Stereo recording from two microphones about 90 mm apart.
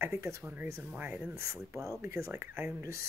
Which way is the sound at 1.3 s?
35° right (ahead or behind).